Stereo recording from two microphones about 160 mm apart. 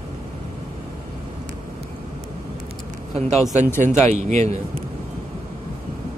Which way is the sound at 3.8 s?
45° right (ahead or behind).